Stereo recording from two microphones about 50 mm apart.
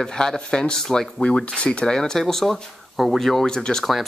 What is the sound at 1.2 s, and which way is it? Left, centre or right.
Speech, centre.